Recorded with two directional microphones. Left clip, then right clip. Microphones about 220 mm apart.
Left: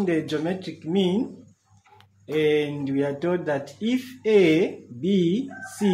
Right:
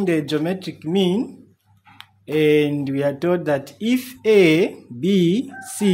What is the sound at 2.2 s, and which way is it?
Speech, 55° right (ahead or behind).